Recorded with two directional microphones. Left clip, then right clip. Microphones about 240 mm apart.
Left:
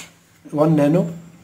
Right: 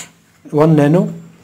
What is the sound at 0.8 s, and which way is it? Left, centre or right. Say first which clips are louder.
Speech: right 4 dB; right.